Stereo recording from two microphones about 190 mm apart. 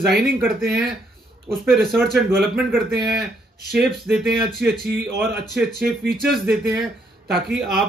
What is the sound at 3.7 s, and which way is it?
Speech, centre (ahead or behind).